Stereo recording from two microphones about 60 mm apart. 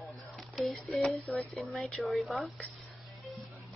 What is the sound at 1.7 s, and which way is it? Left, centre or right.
Speech, centre.